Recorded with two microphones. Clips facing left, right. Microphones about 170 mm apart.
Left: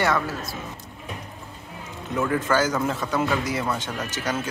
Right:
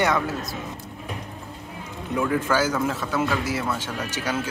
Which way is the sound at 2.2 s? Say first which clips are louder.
Even; 10° right (ahead or behind).